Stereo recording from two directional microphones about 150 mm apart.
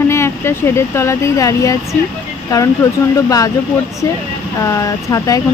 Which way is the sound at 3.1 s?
25° left (ahead or behind).